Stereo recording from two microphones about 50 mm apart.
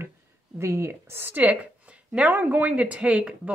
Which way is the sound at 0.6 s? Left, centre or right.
Right.